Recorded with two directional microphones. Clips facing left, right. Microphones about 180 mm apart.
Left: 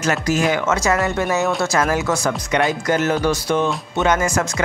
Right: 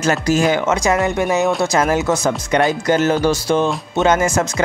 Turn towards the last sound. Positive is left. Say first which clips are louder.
# right 3 dB
turn(degrees=-25)  # may be behind; listen again after turning